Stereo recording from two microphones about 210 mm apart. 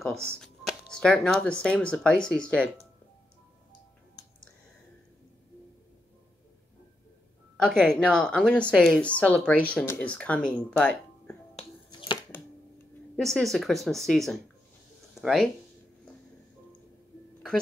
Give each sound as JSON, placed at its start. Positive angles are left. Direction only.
{"t": 0.0, "sound": "speech", "side_deg": 5}
{"t": 7.5, "sound": "speech", "side_deg": 5}
{"t": 11.5, "sound": "finger snapping", "side_deg": 25}
{"t": 13.1, "sound": "speech", "side_deg": 0}